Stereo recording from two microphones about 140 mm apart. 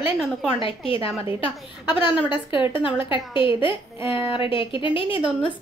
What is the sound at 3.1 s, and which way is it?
A woman's voice, 35° left (ahead or behind).